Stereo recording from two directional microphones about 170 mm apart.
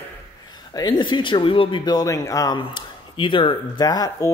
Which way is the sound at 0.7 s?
25° left (ahead or behind).